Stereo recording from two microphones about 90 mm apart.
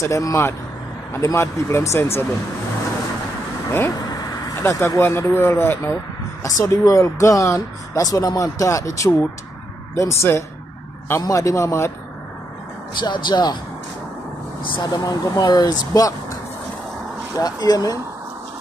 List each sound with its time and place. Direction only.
0.0 s speech: 35° left (ahead or behind)
4.1 s vehicle: 45° left (ahead or behind)
4.6 s speech: 30° left (ahead or behind)
6.4 s speech: 35° left (ahead or behind)
13.0 s speech: 50° left (ahead or behind)
14.8 s speech: 45° left (ahead or behind)
17.4 s speech: 45° left (ahead or behind)